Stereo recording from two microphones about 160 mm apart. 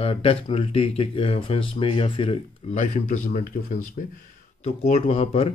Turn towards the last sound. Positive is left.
turn(degrees=40)  # may be behind; listen again after turning